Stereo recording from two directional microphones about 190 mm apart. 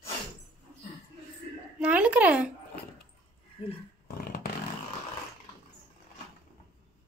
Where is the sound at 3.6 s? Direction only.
30° left (ahead or behind).